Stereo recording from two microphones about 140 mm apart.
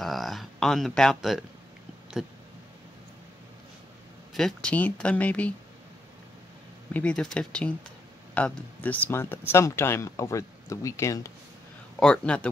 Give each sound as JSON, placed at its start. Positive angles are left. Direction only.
{"t": 0.0, "sound": "a sound", "side_deg": 0}
{"t": 4.3, "sound": "speech", "side_deg": 5}
{"t": 6.9, "sound": "speech", "side_deg": 10}
{"t": 12.0, "sound": "speech", "side_deg": 5}